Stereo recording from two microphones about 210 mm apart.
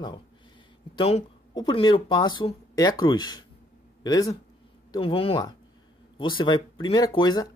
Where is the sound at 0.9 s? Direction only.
25° left (ahead or behind).